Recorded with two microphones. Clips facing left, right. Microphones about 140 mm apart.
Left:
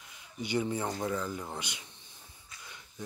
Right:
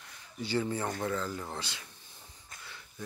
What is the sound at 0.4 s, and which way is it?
Speech, 15° left (ahead or behind).